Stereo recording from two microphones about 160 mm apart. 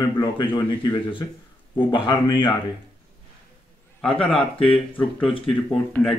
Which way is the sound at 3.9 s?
5° left (ahead or behind).